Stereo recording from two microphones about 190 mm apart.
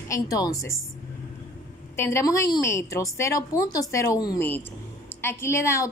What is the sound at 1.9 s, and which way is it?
A woman's voice, 15° left (ahead or behind).